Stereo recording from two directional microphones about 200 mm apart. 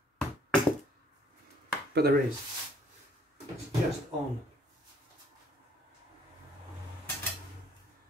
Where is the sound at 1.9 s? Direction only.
50° right (ahead or behind).